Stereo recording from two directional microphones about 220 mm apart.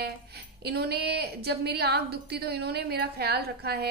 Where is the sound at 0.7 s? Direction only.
45° right (ahead or behind).